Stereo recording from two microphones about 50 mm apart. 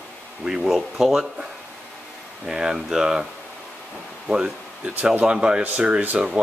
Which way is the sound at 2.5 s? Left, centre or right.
Centre.